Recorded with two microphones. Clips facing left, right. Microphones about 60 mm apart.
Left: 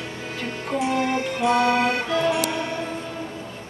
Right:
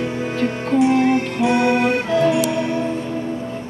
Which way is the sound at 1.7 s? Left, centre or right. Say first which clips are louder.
Right 4 dB; right.